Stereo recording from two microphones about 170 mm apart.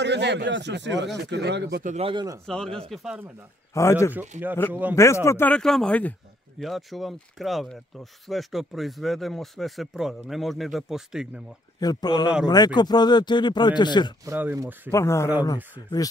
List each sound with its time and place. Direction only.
0.0 s speech: 90° right
1.8 s a man's voice: 45° right (ahead or behind)
2.0 s a man's voice: 25° right (ahead or behind)
2.4 s speech: 5° left (ahead or behind)
3.7 s a man's voice: 15° left (ahead or behind); by 11.4 s 5° right (ahead or behind)
11.8 s speech: 25° left (ahead or behind)
14.2 s speech: 15° right (ahead or behind)
14.9 s a man's voice: 15° left (ahead or behind)